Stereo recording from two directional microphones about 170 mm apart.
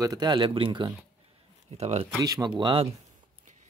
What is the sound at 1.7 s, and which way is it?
Speech, 40° right (ahead or behind).